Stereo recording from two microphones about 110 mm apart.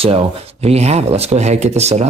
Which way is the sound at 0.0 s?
65° right (ahead or behind).